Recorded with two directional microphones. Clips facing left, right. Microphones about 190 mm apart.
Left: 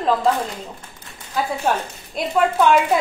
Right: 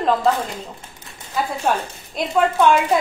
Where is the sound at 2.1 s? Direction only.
Centre (ahead or behind).